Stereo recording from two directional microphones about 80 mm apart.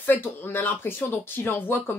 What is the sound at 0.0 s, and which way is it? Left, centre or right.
Speech, left.